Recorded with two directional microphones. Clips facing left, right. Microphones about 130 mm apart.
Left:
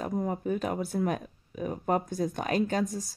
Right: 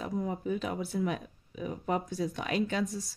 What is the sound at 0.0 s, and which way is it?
Speech, 50° left (ahead or behind).